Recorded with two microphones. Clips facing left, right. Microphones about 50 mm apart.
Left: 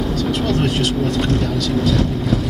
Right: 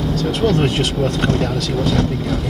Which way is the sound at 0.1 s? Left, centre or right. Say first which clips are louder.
Even; right.